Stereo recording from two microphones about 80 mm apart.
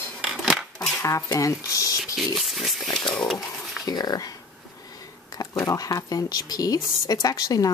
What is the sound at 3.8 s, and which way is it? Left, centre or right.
Speech, left.